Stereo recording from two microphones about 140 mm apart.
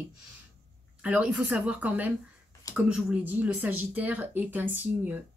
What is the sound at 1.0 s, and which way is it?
Speech, 10° right (ahead or behind).